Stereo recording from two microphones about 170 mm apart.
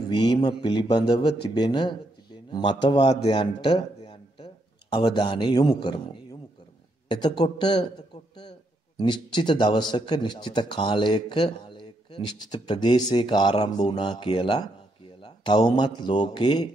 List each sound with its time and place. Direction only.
0.1 s speech: 25° left (ahead or behind)
3.2 s a sound: 35° left (ahead or behind)
4.9 s speech: 30° left (ahead or behind)
7.3 s a man's voice: 25° left (ahead or behind)